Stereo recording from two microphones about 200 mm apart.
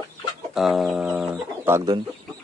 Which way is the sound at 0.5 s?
Centre (ahead or behind).